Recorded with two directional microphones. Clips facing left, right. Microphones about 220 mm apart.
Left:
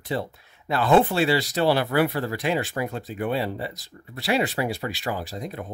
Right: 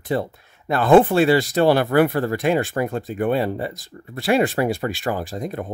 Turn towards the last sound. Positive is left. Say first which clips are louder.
# right 5 dB
turn(degrees=-50)  # may be behind; listen again after turning